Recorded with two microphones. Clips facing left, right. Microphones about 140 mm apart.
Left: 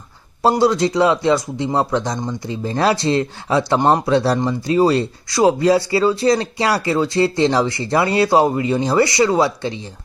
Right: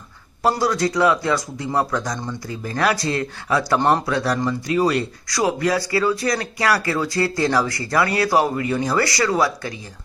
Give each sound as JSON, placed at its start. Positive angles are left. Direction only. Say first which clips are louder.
{"t": 0.4, "sound": "speech", "louder": "left 5 dB", "side_deg": 25}